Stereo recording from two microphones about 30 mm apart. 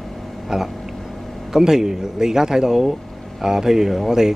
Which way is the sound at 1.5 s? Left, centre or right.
Centre.